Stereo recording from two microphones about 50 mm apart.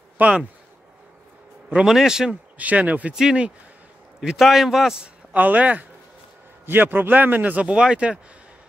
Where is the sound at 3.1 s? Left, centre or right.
Centre.